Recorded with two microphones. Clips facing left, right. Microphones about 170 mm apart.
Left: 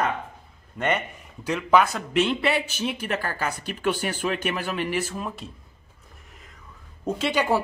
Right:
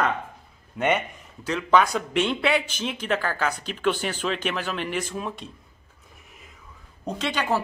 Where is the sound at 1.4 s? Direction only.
10° left (ahead or behind).